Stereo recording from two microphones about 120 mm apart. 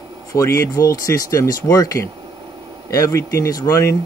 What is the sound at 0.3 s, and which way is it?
Speech, 25° left (ahead or behind).